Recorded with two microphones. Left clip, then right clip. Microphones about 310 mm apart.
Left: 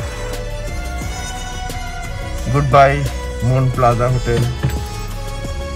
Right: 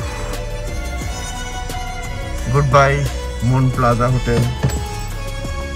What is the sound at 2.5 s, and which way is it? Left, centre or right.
A man's voice, centre.